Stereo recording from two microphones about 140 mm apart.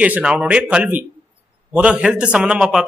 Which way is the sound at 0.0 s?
10° right (ahead or behind).